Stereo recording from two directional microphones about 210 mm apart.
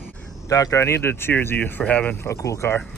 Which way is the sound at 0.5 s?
15° left (ahead or behind).